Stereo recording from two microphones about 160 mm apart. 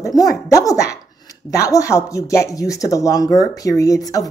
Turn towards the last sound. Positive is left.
turn(degrees=20)  # may be behind; listen again after turning